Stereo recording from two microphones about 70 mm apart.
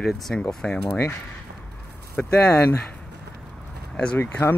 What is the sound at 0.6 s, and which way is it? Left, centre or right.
Speech, centre.